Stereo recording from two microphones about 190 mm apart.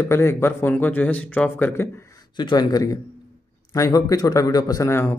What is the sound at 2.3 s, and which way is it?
Speech, 20° left (ahead or behind).